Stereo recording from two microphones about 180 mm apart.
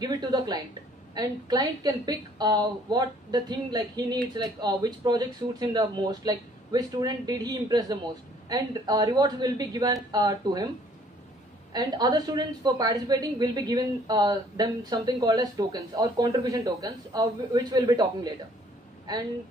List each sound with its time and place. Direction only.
0.0 s a woman's voice: 20° right (ahead or behind)
11.7 s a woman's voice: 20° right (ahead or behind)